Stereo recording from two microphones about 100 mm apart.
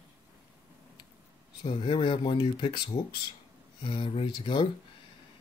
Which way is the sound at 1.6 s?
55° left (ahead or behind).